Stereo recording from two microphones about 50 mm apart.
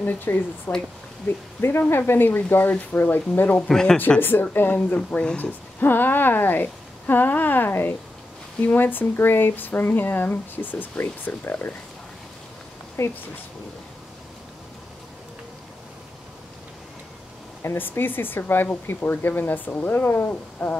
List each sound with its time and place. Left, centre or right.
0.0 s speech: left
3.6 s speech: centre
4.2 s speech: left
13.0 s speech: left
17.7 s speech: left